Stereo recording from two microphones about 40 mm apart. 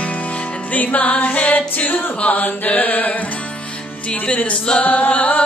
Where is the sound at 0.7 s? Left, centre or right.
Left.